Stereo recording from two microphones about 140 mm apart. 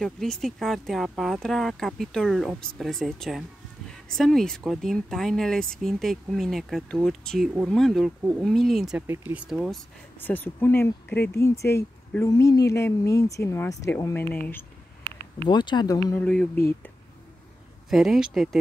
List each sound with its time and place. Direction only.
0.0 s speech: 5° left (ahead or behind)
9.0 s speech: 15° right (ahead or behind)
10.2 s speech: 15° left (ahead or behind)
15.4 s speech: 35° left (ahead or behind)
16.2 s speech: 10° left (ahead or behind)
17.8 s speech: centre (ahead or behind)